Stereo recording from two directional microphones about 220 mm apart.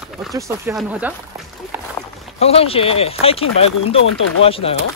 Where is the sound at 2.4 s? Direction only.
25° left (ahead or behind).